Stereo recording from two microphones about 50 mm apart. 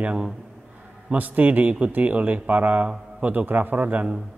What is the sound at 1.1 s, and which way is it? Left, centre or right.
A man's voice, right.